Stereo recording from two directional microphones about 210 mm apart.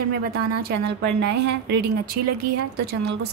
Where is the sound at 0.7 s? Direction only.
50° right (ahead or behind).